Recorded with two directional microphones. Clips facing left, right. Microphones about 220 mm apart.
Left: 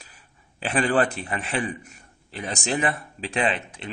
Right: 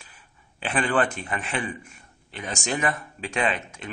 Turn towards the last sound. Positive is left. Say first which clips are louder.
# left 1 dB
turn(degrees=30)  # may be behind; listen again after turning